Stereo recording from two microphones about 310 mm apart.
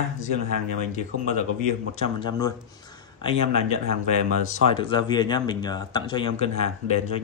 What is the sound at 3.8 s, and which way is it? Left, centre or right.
Speech, right.